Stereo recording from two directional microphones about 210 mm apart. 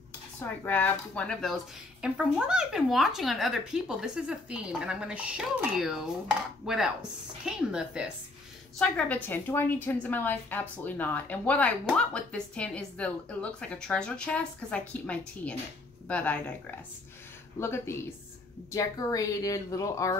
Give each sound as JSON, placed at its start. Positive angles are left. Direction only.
{"t": 0.7, "sound": "a woman's voice", "side_deg": 5}
{"t": 17.6, "sound": "a woman's voice", "side_deg": 10}